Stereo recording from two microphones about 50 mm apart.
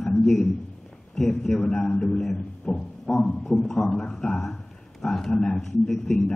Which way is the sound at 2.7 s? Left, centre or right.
Centre.